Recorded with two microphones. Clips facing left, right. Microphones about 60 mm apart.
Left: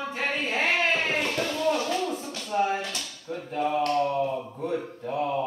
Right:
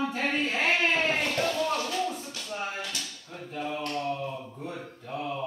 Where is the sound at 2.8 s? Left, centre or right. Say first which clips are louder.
Left 2 dB; left.